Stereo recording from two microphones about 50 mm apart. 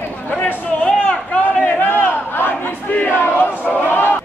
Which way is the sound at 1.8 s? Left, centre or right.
Left.